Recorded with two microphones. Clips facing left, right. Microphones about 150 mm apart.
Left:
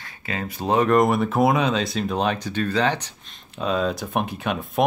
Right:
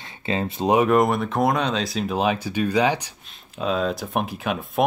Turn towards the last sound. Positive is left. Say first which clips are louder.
# even
turn(degrees=0)  # may be behind; listen again after turning